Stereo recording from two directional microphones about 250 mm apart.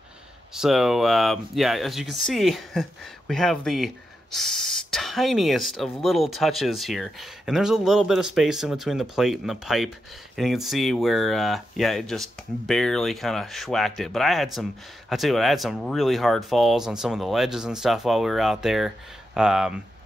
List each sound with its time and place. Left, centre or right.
0.6 s speech: centre